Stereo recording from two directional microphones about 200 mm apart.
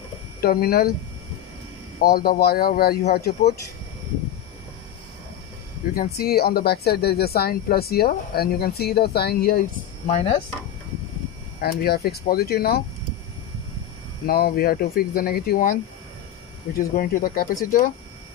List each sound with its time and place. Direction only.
0.4 s speech: 50° left (ahead or behind)
2.0 s speech: 50° left (ahead or behind)
5.9 s speech: 50° left (ahead or behind)
10.0 s speech: 30° left (ahead or behind)
11.6 s speech: 50° left (ahead or behind)
14.2 s speech: 50° left (ahead or behind)
16.7 s speech: 45° left (ahead or behind)